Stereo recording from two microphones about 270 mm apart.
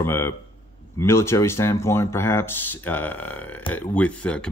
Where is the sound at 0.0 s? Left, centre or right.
Centre.